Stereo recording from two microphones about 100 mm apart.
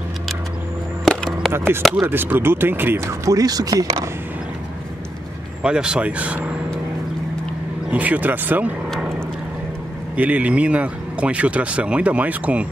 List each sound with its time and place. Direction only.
1.0 s music: 5° left (ahead or behind)
2.0 s speech: 20° right (ahead or behind)
3.3 s speech: 40° right (ahead or behind)
5.6 s speech: 10° right (ahead or behind)
7.9 s speech: 15° right (ahead or behind)
10.1 s speech: 15° right (ahead or behind)